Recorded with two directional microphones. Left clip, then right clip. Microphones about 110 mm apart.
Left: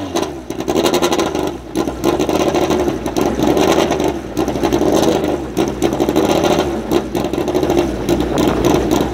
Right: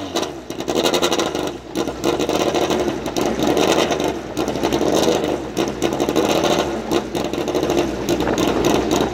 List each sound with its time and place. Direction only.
0.7 s vehicle: 20° right (ahead or behind)